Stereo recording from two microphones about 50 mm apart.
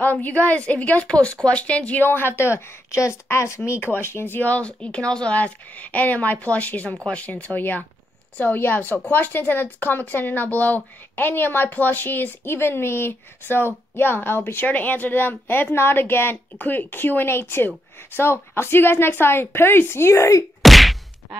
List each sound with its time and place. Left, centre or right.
0.0 s a woman's voice: left
2.0 s a woman's voice: left
3.8 s speech: left
4.5 s a woman's voice: left
5.4 s a woman's voice: left
14.7 s speech: left
20.6 s whack: centre